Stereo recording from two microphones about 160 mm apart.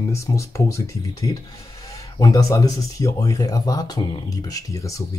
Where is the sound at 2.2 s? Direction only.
20° left (ahead or behind).